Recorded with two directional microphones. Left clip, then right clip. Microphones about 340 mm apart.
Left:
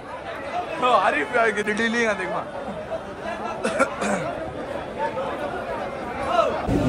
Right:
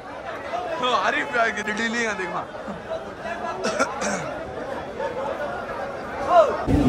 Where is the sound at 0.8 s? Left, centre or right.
Centre.